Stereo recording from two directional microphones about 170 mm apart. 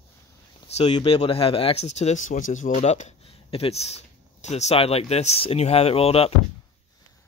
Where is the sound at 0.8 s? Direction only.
40° left (ahead or behind).